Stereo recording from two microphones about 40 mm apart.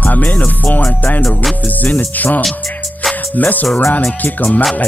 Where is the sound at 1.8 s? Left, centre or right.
Left.